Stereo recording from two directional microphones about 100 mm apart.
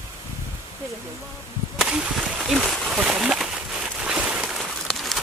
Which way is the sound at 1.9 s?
10° right (ahead or behind).